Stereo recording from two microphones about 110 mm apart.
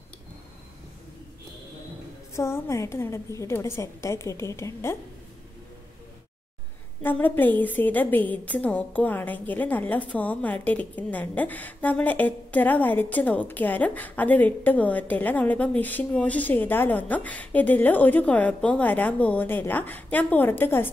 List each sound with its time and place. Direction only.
2.3 s a woman's voice: 25° left (ahead or behind)
7.0 s a woman's voice: 15° left (ahead or behind)